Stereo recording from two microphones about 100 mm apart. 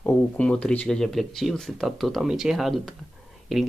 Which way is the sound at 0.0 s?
10° left (ahead or behind).